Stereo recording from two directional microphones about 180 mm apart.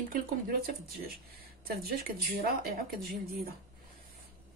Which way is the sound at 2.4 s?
55° right (ahead or behind).